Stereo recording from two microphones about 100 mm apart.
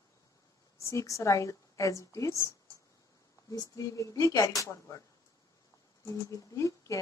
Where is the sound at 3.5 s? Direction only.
40° left (ahead or behind).